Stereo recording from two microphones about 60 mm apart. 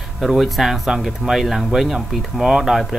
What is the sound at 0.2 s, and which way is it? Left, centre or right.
Speech, centre.